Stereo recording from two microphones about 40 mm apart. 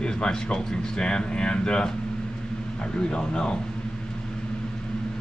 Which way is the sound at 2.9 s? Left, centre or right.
Left.